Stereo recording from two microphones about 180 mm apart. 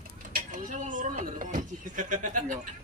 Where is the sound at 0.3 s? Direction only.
45° right (ahead or behind).